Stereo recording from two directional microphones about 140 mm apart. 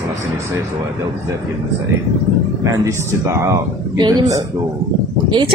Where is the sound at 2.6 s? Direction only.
20° right (ahead or behind).